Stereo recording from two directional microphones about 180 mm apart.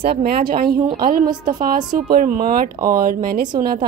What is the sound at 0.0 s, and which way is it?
A woman's voice, 55° right (ahead or behind).